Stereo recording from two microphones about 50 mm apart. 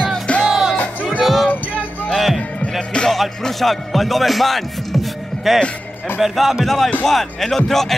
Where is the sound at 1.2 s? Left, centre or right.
Centre.